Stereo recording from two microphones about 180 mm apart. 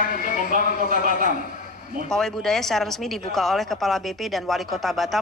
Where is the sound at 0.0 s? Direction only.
50° left (ahead or behind).